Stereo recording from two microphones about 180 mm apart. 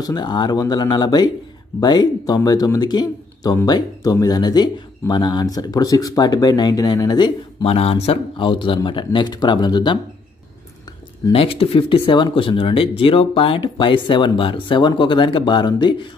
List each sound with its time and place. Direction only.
0.0 s speech: 25° left (ahead or behind)
11.3 s speech: 30° left (ahead or behind)